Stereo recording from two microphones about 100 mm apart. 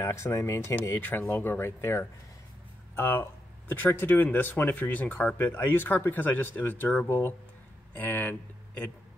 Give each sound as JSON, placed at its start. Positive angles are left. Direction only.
{"t": 0.0, "sound": "speech", "side_deg": 25}